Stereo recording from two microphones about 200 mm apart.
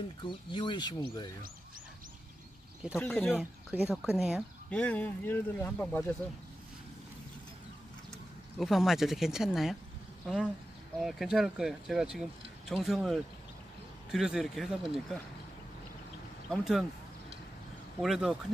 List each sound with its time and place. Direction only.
0.2 s speech: 25° left (ahead or behind)
3.0 s speech: 5° left (ahead or behind)
8.5 s speech: centre (ahead or behind)
16.4 s speech: centre (ahead or behind)
18.0 s speech: centre (ahead or behind)